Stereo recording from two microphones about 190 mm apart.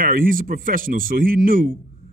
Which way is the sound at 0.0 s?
45° right (ahead or behind).